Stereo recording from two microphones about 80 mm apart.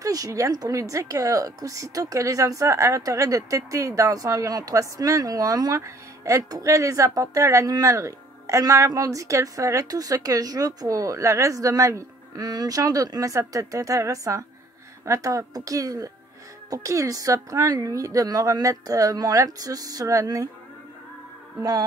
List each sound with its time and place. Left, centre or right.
0.0 s a woman's voice: right